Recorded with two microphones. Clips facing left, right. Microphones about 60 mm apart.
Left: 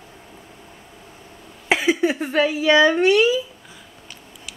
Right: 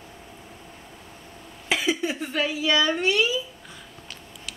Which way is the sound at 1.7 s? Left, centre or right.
Left.